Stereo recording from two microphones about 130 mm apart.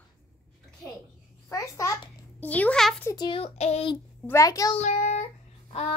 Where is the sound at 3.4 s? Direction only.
55° left (ahead or behind).